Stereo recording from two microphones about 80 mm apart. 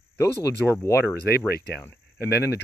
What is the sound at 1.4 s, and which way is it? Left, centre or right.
Speech, centre.